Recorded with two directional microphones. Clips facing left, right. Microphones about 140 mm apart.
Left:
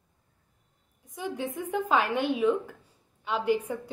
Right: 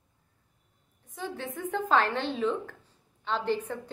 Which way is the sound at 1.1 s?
15° left (ahead or behind).